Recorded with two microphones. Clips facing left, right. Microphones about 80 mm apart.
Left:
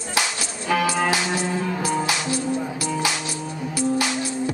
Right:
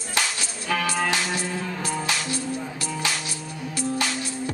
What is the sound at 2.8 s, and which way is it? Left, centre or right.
Music, centre.